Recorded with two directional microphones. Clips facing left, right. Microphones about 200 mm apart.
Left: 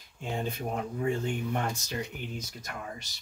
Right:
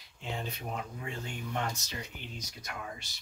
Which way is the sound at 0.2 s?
50° left (ahead or behind).